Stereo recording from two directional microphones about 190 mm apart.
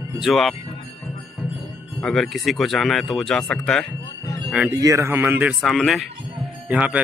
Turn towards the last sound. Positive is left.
turn(degrees=-5)  # may be behind; listen again after turning